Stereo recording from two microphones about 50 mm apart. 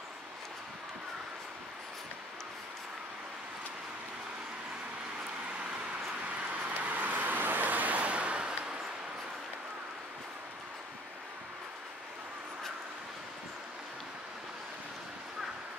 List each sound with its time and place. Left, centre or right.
5.2 s vehicle: centre
6.2 s vehicle: right